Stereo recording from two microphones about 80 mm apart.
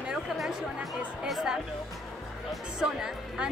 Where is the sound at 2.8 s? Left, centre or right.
Centre.